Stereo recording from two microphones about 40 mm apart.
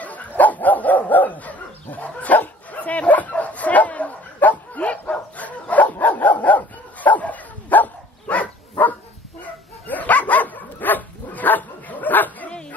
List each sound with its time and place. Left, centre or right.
0.0 s dog: left